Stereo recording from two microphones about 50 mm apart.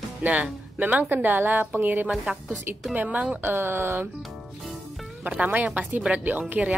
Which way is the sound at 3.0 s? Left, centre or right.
Right.